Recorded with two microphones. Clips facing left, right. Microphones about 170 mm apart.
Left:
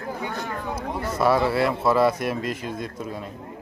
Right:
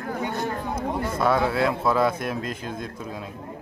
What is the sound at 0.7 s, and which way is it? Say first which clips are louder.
Speech: right 2 dB; 55° right (ahead or behind).